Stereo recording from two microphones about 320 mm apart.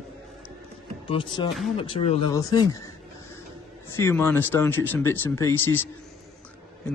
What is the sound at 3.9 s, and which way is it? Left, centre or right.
Speech, centre.